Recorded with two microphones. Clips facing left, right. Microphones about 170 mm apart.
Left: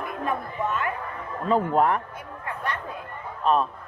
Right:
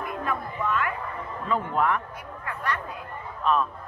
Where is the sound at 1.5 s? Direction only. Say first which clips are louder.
Left 4 dB; 40° left (ahead or behind).